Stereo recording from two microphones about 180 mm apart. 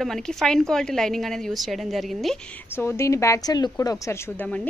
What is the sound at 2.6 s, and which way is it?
A woman's voice, 15° left (ahead or behind).